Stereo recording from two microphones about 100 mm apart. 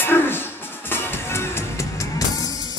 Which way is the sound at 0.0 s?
20° left (ahead or behind).